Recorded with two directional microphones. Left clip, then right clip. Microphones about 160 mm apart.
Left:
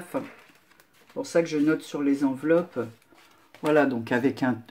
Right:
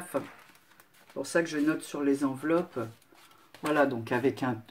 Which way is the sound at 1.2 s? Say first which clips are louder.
Left 5 dB; 20° left (ahead or behind).